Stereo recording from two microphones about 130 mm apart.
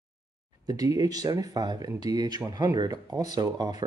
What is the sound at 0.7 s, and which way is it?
Speech, 30° right (ahead or behind).